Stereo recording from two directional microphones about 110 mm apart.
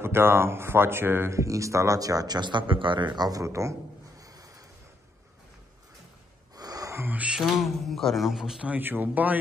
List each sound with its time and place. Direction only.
0.0 s speech: 20° right (ahead or behind)
4.2 s a sound: 30° right (ahead or behind)
6.5 s gasp: 35° right (ahead or behind)
7.1 s speech: 10° right (ahead or behind)